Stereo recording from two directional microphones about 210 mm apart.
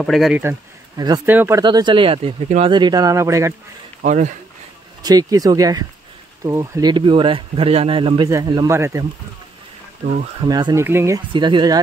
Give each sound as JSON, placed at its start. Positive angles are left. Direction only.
{"t": 0.0, "sound": "speech", "side_deg": 0}
{"t": 0.4, "sound": "speech", "side_deg": -15}
{"t": 1.6, "sound": "speech", "side_deg": -20}
{"t": 4.0, "sound": "speech", "side_deg": -35}
{"t": 5.0, "sound": "speech", "side_deg": -20}
{"t": 10.0, "sound": "speech", "side_deg": -30}
{"t": 10.5, "sound": "speech", "side_deg": -15}
{"t": 11.3, "sound": "speech", "side_deg": -20}